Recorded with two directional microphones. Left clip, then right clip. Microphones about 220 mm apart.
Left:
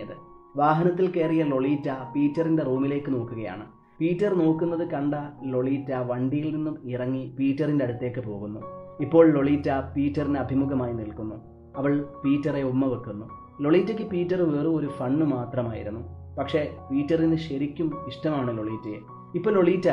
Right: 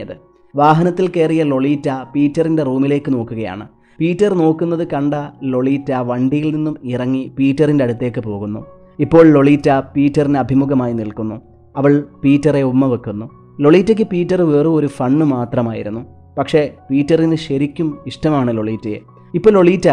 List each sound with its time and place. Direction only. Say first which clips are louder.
0.6 s speech: right 10 dB; 45° right (ahead or behind)